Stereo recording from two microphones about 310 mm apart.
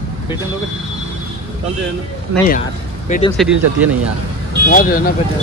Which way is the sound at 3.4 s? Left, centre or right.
Centre.